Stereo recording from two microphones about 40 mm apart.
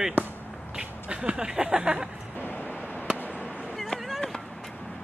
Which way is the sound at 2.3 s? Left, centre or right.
Left.